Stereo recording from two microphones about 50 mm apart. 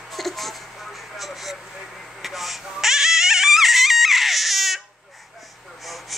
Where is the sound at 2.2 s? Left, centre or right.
Centre.